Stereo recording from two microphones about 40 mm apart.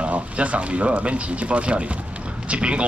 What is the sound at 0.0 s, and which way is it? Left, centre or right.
Speech, right.